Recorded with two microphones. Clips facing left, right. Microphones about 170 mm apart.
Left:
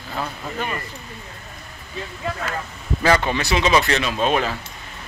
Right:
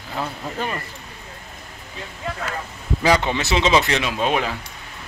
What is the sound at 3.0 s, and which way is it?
Speech, 15° right (ahead or behind).